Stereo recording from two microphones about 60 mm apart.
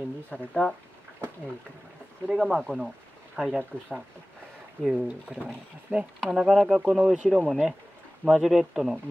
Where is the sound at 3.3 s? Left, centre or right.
Centre.